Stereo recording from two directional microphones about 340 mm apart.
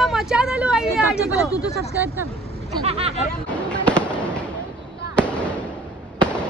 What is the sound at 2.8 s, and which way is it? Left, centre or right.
Speech, centre.